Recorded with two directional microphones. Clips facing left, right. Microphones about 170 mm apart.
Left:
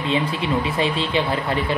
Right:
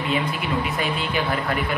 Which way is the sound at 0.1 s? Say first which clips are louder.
Left 4 dB; 30° left (ahead or behind).